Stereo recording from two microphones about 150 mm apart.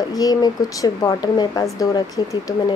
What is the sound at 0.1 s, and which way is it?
A woman's voice, 25° left (ahead or behind).